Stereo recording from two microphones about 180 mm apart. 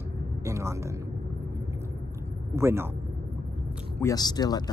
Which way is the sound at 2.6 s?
15° right (ahead or behind).